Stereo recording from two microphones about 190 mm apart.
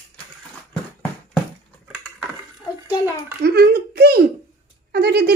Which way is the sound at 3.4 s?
55° right (ahead or behind).